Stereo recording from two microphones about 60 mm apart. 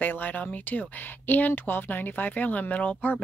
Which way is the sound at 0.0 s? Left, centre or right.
Left.